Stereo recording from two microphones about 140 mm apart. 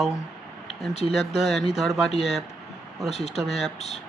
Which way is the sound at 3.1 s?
50° left (ahead or behind).